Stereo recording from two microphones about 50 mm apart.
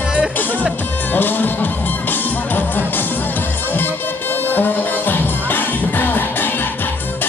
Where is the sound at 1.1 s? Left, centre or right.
Left.